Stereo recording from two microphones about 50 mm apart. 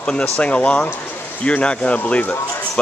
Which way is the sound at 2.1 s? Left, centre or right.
Left.